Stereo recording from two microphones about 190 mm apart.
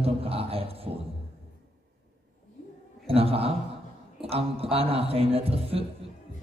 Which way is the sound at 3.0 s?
30° right (ahead or behind).